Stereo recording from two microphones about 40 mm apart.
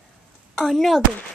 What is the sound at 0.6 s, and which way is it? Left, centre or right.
Speech, centre.